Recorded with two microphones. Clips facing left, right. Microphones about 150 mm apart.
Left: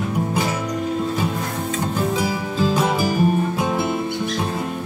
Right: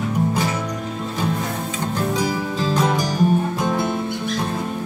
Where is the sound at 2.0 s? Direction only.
5° left (ahead or behind).